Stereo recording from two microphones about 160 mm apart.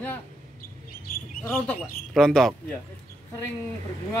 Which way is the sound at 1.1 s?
65° left (ahead or behind).